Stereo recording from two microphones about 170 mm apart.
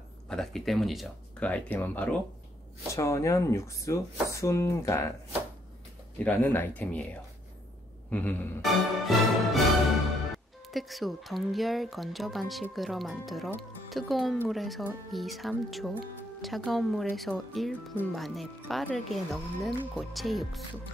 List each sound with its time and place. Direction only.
0.3 s speech: 5° left (ahead or behind)
6.1 s speech: 10° left (ahead or behind)
8.6 s speech: centre (ahead or behind)